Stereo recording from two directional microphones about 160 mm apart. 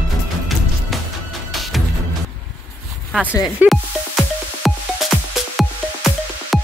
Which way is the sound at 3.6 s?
10° right (ahead or behind).